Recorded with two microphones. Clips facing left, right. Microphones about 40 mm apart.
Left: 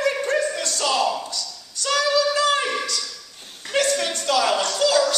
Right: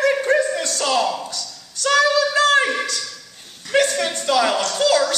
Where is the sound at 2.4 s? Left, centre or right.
Right.